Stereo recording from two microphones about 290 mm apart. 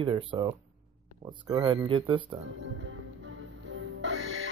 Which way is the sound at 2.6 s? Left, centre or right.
Right.